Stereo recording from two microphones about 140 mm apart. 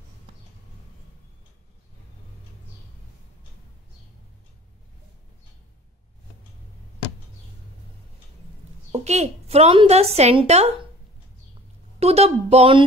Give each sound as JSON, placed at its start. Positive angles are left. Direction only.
{"t": 8.9, "sound": "a woman's voice", "side_deg": -50}
{"t": 12.0, "sound": "a woman's voice", "side_deg": -45}